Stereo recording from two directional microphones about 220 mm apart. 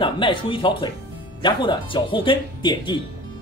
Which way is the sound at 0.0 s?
20° left (ahead or behind).